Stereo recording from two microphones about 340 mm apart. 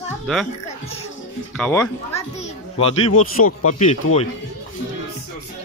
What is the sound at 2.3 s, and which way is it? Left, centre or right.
Music, centre.